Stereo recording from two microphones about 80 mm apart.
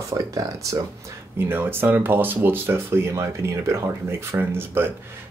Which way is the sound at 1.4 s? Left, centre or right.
Right.